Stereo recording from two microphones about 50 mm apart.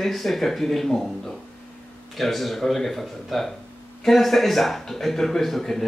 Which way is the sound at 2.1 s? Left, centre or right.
Centre.